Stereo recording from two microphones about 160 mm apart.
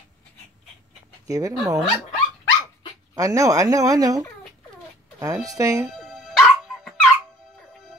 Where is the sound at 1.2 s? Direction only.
20° right (ahead or behind).